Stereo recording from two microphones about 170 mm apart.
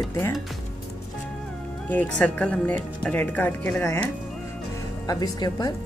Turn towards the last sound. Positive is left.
turn(degrees=25)  # may be behind; listen again after turning